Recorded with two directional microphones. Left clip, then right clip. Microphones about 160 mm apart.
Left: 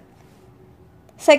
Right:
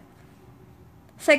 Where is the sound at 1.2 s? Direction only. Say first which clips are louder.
Left 5 dB; 15° left (ahead or behind).